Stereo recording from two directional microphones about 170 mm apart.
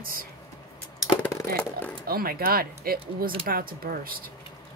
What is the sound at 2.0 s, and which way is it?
Speech, 60° right (ahead or behind).